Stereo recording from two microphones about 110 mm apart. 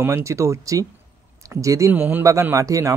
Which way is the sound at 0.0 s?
25° right (ahead or behind).